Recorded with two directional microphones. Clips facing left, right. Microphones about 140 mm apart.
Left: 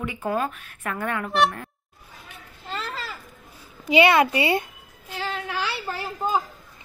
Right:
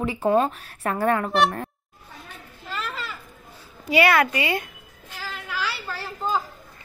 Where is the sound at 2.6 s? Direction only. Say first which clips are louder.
Even; 30° left (ahead or behind).